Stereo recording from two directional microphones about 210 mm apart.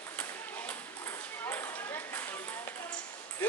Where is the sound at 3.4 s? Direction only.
5° left (ahead or behind).